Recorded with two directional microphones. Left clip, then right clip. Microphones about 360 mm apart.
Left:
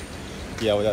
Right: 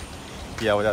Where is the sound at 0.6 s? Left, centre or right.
Centre.